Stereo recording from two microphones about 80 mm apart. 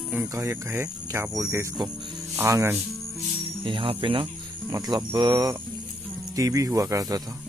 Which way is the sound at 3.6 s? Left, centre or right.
Right.